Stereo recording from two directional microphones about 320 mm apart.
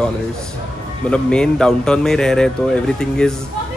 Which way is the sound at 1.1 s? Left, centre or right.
Centre.